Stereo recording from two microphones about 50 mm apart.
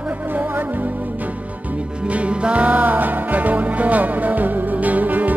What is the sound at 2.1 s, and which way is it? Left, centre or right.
Music, right.